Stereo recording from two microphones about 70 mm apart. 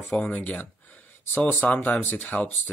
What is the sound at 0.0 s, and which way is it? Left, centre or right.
Speech, centre.